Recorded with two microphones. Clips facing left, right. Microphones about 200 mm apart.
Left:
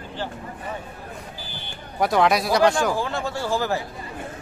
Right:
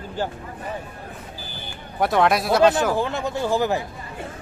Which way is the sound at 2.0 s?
Centre (ahead or behind).